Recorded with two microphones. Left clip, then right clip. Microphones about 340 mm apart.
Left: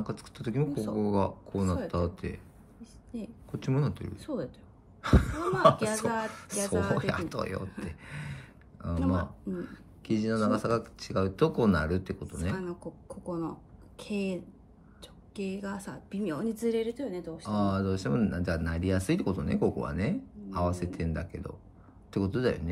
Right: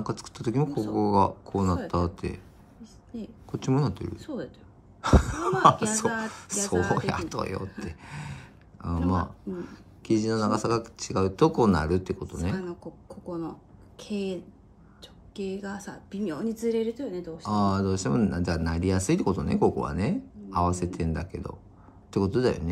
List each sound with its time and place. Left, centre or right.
0.0 s speech: centre
0.7 s speech: centre
0.9 s speech: centre
2.8 s a sound: centre
3.5 s speech: centre
4.3 s a woman's voice: left
5.0 s a sound: centre
6.2 s speech: centre
6.7 s speech: centre
7.0 s speech: centre
7.8 s a sound: centre
9.6 s speech: centre
13.1 s a woman's voice: centre
17.5 s speech: centre